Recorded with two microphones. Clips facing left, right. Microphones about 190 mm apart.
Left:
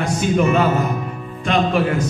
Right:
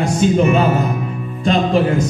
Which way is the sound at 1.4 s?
30° right (ahead or behind).